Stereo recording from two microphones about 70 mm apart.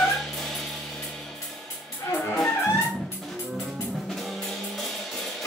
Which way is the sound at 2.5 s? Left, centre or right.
Left.